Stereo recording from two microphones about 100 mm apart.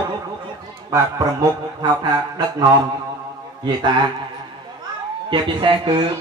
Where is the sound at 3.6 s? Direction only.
50° right (ahead or behind).